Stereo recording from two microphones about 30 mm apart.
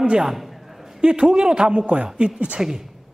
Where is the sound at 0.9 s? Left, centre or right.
Right.